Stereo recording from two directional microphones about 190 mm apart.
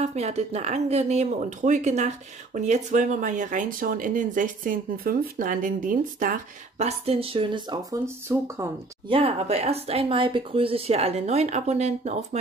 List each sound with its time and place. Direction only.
0.0 s speech: 35° right (ahead or behind); by 8.6 s 15° right (ahead or behind)
9.1 s speech: 30° right (ahead or behind)